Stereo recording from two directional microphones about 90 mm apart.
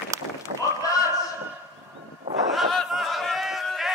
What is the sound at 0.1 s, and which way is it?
Run, 35° right (ahead or behind).